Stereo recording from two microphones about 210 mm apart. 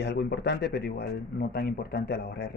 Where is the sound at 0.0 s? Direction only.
55° left (ahead or behind).